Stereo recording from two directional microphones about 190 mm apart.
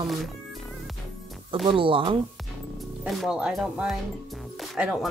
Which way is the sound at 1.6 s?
25° right (ahead or behind).